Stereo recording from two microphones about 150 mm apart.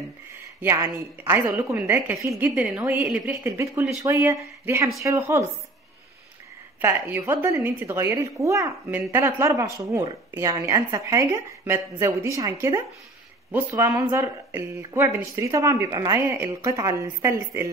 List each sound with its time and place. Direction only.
0.9 s a woman's voice: 15° right (ahead or behind)
3.4 s speech: 20° right (ahead or behind)
6.8 s a woman's voice: 15° right (ahead or behind)